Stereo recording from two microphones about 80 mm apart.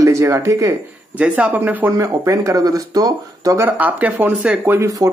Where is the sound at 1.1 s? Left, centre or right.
Centre.